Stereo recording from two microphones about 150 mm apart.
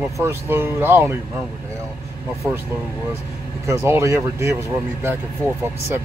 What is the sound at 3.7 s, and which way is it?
Speech, 20° right (ahead or behind).